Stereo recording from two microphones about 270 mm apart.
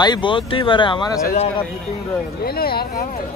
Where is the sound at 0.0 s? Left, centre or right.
Centre.